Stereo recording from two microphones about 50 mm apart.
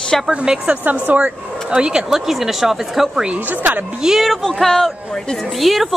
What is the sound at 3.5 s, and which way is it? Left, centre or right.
Speech, right.